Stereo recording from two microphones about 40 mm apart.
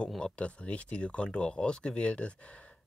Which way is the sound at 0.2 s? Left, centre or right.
Left.